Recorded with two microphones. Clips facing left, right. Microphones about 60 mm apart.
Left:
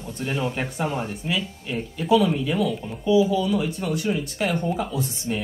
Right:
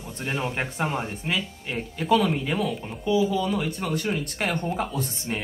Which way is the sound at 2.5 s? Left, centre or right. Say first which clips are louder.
Left 3 dB; centre.